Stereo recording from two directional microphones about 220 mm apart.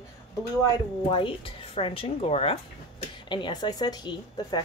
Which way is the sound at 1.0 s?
25° left (ahead or behind).